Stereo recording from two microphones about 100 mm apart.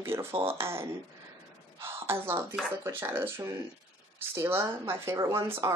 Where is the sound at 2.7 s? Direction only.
25° right (ahead or behind).